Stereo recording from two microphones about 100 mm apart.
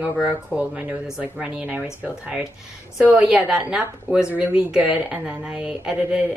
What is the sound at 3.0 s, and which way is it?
Speech, 10° right (ahead or behind).